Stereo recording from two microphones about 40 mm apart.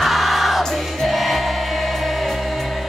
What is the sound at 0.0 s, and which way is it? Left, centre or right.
Music, centre.